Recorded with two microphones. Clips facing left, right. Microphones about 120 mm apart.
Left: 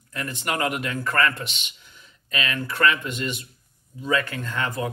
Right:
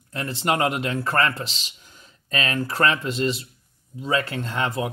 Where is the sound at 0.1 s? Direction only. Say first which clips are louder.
Right 4 dB; 30° right (ahead or behind).